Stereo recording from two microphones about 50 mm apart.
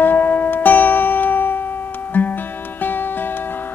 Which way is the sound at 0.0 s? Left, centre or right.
Left.